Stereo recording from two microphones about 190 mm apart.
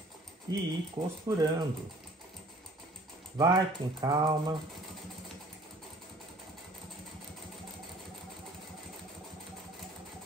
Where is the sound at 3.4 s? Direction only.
20° right (ahead or behind).